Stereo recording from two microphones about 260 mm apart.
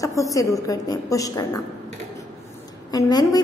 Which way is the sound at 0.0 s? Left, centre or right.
Centre.